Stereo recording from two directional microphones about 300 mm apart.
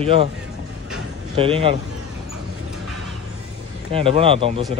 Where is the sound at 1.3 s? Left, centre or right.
Centre.